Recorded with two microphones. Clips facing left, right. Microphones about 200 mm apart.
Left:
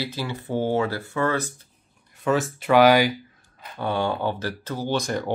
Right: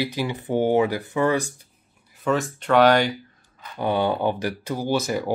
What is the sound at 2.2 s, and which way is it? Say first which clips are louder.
Speech: left 1 dB; centre (ahead or behind).